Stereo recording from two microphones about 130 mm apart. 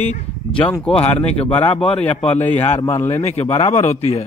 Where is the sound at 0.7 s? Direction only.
10° left (ahead or behind).